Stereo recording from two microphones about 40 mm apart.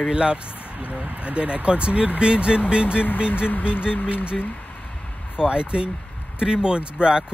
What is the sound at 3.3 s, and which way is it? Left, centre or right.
Speech, left.